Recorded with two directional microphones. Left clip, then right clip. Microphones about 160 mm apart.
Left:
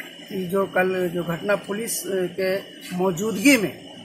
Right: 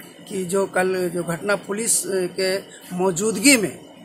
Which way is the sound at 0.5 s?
20° right (ahead or behind).